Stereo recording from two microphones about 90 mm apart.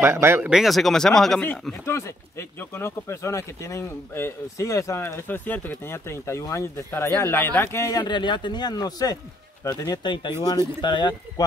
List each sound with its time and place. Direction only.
0.0 s speech: 25° right (ahead or behind)
0.5 s speech: centre (ahead or behind)
1.9 s speech: 30° left (ahead or behind)
7.9 s speech: 55° left (ahead or behind)
9.8 s speech: 60° left (ahead or behind)